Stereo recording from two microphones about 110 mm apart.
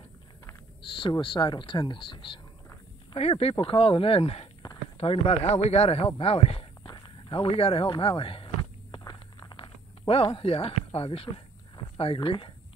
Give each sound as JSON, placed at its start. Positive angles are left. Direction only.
{"t": 1.2, "sound": "speech", "side_deg": 45}
{"t": 3.2, "sound": "speech", "side_deg": 65}
{"t": 3.5, "sound": "speech", "side_deg": 55}
{"t": 5.1, "sound": "speech", "side_deg": 45}
{"t": 5.4, "sound": "a sound", "side_deg": 70}
{"t": 10.0, "sound": "speech", "side_deg": 55}